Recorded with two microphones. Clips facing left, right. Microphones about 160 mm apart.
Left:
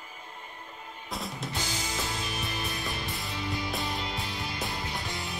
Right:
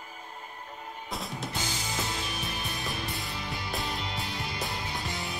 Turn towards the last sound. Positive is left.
turn(degrees=0)  # may be behind; listen again after turning